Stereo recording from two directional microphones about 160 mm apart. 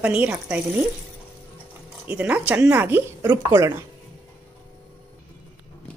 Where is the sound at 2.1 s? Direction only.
10° right (ahead or behind).